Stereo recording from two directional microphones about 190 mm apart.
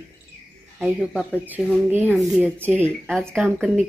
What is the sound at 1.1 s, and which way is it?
Speech, 5° left (ahead or behind).